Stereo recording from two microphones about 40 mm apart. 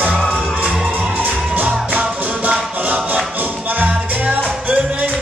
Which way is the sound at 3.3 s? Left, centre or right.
Right.